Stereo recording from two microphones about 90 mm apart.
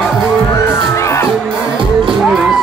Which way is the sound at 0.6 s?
35° left (ahead or behind).